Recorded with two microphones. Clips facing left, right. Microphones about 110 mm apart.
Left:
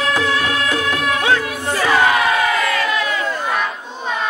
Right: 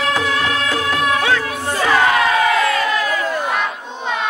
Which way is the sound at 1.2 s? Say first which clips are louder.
Left 1 dB; 20° left (ahead or behind).